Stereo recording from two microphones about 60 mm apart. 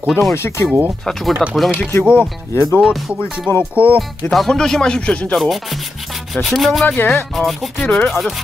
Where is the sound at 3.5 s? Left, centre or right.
Left.